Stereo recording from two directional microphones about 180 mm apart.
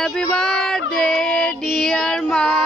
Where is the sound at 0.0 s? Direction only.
Centre (ahead or behind).